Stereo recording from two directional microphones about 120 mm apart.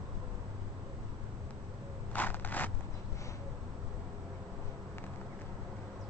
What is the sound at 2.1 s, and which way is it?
Vehicle, 15° left (ahead or behind).